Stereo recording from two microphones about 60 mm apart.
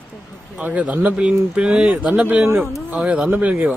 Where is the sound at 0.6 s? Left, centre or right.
Right.